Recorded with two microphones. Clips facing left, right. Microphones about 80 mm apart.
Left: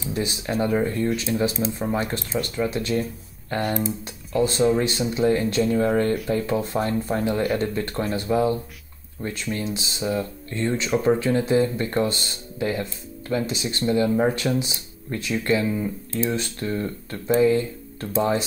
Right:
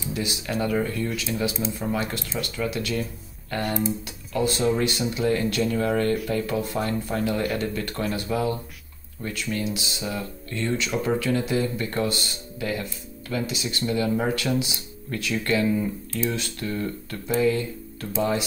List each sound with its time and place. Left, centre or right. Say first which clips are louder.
0.1 s speech: left 3 dB; left
16.1 s speech: left 2 dB; left